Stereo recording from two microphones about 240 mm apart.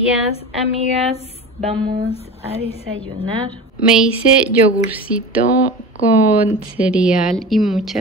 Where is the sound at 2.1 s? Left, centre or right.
Left.